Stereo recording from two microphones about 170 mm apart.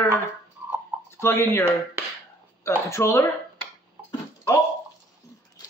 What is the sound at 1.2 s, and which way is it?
Speech, 15° left (ahead or behind).